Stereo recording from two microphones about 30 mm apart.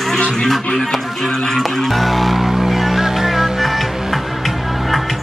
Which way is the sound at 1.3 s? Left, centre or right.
Centre.